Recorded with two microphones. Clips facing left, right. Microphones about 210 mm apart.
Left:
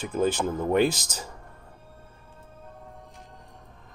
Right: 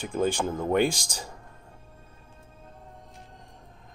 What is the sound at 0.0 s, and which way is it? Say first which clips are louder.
Speech: left 1 dB; 5° left (ahead or behind).